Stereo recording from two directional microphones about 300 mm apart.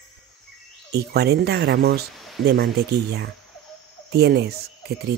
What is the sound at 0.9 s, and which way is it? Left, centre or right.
Speech, right.